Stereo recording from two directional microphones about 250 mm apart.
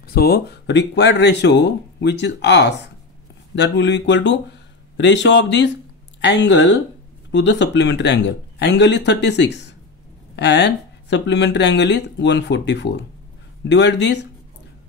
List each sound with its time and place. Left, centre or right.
0.0 s speech: left